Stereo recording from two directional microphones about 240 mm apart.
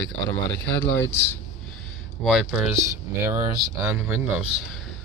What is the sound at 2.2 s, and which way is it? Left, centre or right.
Speech, centre.